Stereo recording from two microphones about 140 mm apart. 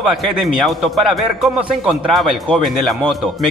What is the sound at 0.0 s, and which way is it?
Speech, centre (ahead or behind).